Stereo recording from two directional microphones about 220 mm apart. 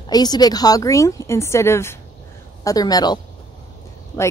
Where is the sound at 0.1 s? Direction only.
20° left (ahead or behind).